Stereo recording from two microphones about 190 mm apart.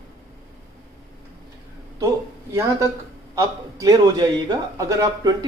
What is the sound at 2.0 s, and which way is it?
A man's voice, 15° right (ahead or behind).